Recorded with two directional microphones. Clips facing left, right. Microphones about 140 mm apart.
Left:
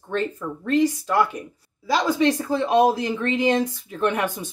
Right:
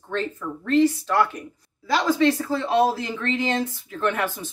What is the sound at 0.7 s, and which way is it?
Speech, 15° left (ahead or behind).